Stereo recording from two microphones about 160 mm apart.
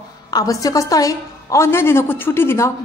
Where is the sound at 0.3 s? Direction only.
20° left (ahead or behind).